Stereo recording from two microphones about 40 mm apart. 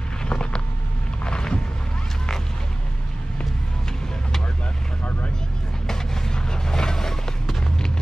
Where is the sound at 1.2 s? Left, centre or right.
Left.